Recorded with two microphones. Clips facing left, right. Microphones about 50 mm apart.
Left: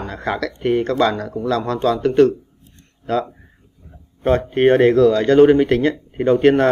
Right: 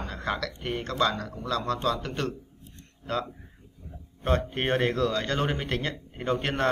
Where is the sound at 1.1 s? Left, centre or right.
Left.